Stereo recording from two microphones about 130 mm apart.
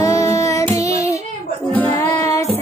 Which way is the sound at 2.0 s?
25° left (ahead or behind).